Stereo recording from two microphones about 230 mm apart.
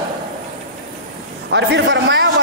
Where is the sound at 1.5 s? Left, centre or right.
Right.